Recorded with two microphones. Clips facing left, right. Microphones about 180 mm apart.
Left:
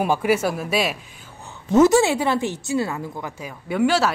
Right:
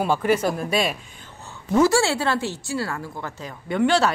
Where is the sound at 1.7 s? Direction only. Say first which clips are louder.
Left 3 dB; 20° left (ahead or behind).